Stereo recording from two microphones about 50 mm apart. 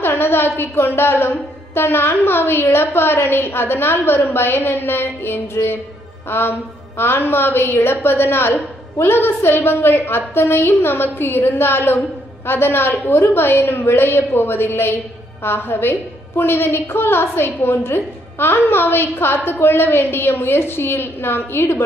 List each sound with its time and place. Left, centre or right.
0.0 s a woman's voice: left